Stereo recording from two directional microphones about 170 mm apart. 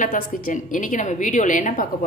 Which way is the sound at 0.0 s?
50° left (ahead or behind).